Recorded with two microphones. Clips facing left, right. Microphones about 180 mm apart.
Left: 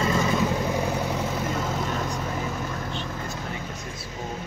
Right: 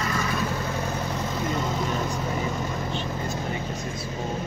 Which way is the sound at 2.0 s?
Centre (ahead or behind).